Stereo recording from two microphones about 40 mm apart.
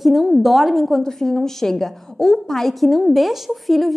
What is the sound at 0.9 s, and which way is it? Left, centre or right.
A woman's voice, centre.